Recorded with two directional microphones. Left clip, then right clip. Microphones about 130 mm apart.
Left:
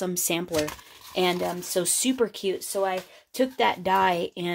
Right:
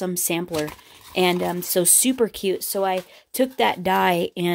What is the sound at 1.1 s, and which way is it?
Speech, 55° right (ahead or behind).